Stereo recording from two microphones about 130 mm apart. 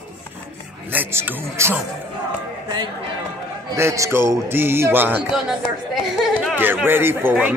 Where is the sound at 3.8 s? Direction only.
20° right (ahead or behind).